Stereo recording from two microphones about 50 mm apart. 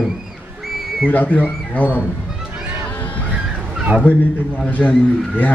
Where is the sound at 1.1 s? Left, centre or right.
Left.